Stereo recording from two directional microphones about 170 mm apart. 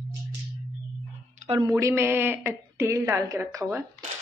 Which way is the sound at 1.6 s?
15° right (ahead or behind).